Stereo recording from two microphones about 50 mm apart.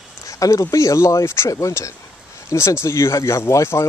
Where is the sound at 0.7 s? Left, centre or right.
Left.